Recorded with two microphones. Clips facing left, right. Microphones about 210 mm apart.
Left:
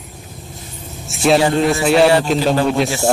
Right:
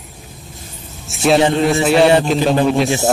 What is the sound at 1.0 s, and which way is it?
A man's voice, centre (ahead or behind).